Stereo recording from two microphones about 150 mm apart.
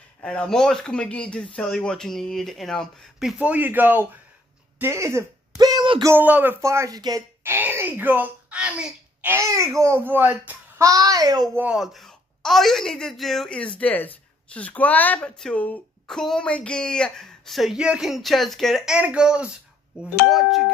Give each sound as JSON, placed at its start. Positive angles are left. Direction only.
{"t": 0.2, "sound": "speech", "side_deg": 5}
{"t": 5.6, "sound": "a sound", "side_deg": -30}
{"t": 6.1, "sound": "speech", "side_deg": -10}
{"t": 7.4, "sound": "speech", "side_deg": -15}
{"t": 10.8, "sound": "a child's voice", "side_deg": -25}
{"t": 11.5, "sound": "speech", "side_deg": -5}